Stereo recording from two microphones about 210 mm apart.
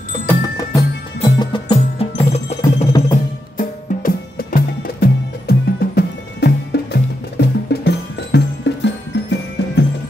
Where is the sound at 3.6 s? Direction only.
45° left (ahead or behind).